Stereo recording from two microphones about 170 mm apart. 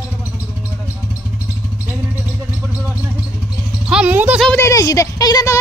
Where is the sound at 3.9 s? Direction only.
5° right (ahead or behind).